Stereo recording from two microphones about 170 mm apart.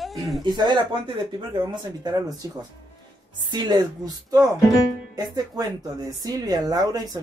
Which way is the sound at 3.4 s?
25° right (ahead or behind).